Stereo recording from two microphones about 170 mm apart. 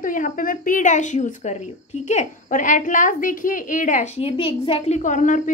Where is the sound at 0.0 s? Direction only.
50° left (ahead or behind).